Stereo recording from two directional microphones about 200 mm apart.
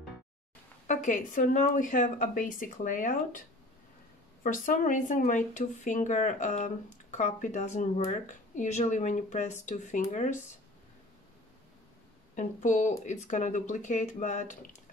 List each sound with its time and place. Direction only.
0.8 s speech: 40° left (ahead or behind)
4.6 s speech: 40° left (ahead or behind)
12.4 s speech: 40° left (ahead or behind)